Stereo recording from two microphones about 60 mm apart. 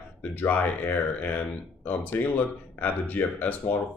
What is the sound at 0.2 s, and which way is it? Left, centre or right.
Speech, left.